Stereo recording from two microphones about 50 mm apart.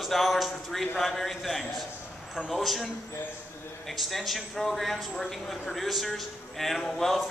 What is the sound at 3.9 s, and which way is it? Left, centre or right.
A man's voice, centre.